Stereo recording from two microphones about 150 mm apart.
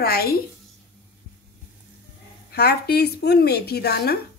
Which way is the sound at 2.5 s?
90° left.